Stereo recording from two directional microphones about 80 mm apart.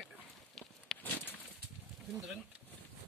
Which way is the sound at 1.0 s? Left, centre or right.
Left.